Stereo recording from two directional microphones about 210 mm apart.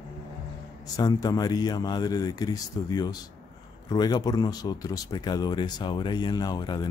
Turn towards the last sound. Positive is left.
turn(degrees=20)  # may be behind; listen again after turning